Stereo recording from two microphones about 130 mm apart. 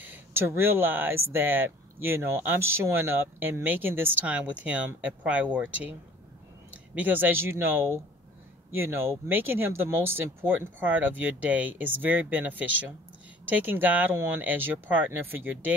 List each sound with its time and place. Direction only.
0.0 s speech: 15° right (ahead or behind)